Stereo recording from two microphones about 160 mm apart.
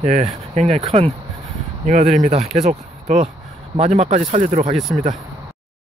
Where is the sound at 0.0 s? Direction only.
45° right (ahead or behind).